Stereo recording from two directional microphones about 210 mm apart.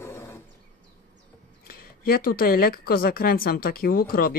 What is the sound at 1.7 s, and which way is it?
Speech, 45° left (ahead or behind).